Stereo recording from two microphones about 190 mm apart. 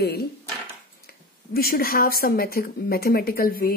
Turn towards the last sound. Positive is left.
turn(degrees=50)  # may be behind; listen again after turning